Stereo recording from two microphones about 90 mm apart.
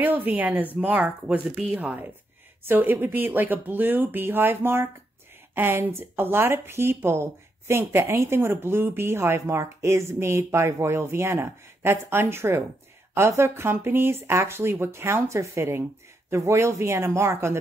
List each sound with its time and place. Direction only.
0.0 s a woman's voice: 20° right (ahead or behind)